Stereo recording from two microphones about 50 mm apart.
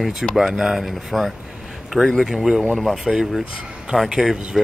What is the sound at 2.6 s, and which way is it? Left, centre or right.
Speech, centre.